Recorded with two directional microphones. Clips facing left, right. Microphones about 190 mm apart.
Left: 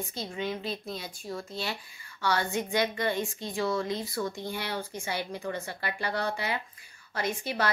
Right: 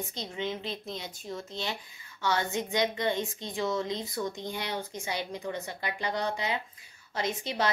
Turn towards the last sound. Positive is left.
turn(degrees=-20)  # may be behind; listen again after turning